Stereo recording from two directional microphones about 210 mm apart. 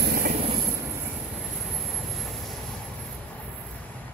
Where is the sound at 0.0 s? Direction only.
45° right (ahead or behind).